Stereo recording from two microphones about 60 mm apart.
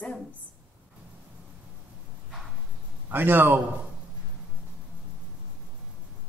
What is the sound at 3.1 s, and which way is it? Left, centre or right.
Speech, right.